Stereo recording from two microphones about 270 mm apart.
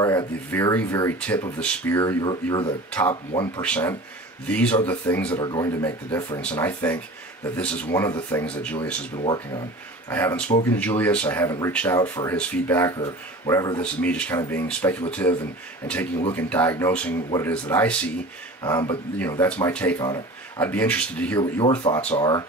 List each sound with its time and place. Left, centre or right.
0.0 s speech: centre
3.6 s speech: centre
9.1 s speech: centre
16.3 s speech: centre
21.4 s speech: centre